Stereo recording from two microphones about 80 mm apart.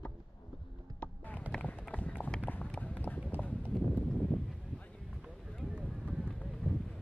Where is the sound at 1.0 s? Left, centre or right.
Left.